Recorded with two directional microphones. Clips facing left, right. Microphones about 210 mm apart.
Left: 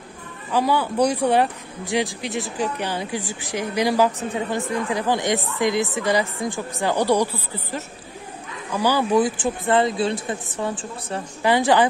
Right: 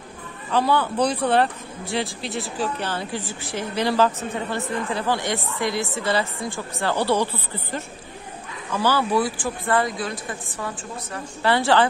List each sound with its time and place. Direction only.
0.5 s speech: 10° left (ahead or behind); by 11.2 s 30° left (ahead or behind)
11.4 s speech: 15° left (ahead or behind)